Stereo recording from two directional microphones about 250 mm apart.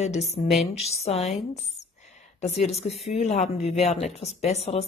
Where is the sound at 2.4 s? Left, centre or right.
Left.